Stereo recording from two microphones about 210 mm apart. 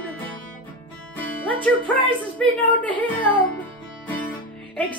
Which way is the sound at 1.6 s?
5° left (ahead or behind).